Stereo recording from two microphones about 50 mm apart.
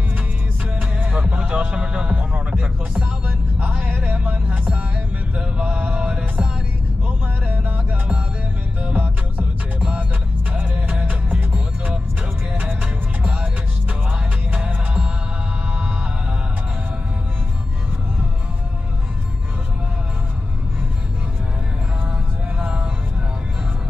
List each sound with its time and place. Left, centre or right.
0.7 s music: right
13.2 s music: right